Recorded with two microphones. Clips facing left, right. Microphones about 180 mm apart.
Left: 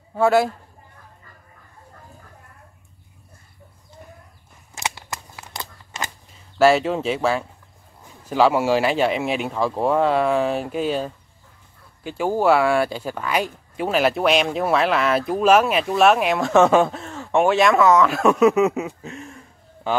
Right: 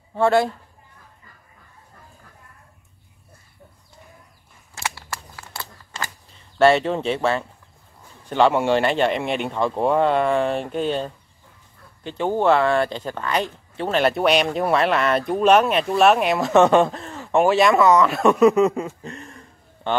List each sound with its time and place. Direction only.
0.1 s a man's voice: 5° left (ahead or behind)
4.7 s a sound: 20° left (ahead or behind)
6.6 s speech: centre (ahead or behind)